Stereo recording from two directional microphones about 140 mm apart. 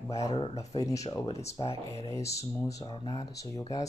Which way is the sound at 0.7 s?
25° left (ahead or behind).